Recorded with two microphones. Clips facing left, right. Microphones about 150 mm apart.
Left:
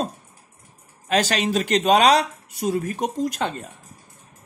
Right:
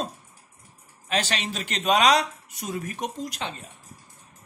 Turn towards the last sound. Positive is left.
turn(degrees=50)  # may be behind; listen again after turning